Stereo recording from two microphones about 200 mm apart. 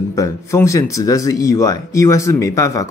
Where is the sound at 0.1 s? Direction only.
15° left (ahead or behind).